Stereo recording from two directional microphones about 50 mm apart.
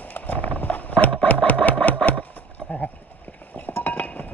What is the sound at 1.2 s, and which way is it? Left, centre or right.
Engine, left.